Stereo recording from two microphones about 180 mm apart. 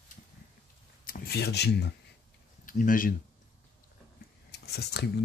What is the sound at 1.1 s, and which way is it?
Speech, 65° left (ahead or behind).